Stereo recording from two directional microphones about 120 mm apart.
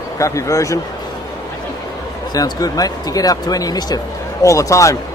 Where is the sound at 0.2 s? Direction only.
25° left (ahead or behind).